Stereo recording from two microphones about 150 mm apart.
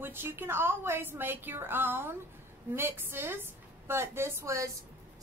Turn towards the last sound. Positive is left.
turn(degrees=-20)  # may be behind; listen again after turning